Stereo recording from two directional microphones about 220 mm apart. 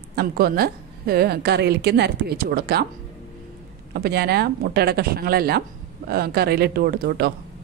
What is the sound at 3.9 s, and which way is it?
A woman's voice, 45° right (ahead or behind).